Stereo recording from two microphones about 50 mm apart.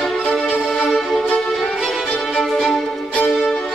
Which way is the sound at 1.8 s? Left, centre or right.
Centre.